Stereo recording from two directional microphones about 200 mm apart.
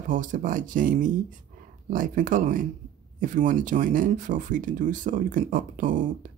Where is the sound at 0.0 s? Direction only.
40° right (ahead or behind).